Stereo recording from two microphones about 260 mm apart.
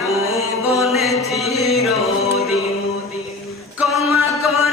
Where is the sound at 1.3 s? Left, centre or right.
Centre.